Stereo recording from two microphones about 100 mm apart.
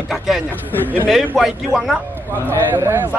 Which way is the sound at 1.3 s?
5° right (ahead or behind).